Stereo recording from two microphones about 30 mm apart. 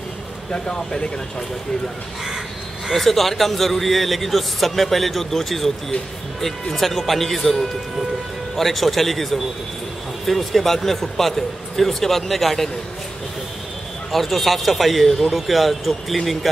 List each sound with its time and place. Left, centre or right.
0.5 s speech: left
2.9 s a man's voice: centre
14.1 s a man's voice: centre